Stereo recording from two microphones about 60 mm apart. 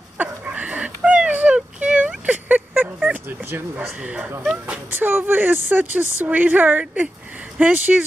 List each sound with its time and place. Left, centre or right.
0.5 s a sound: centre
3.1 s speech: right
3.7 s speech: centre
4.9 s speech: right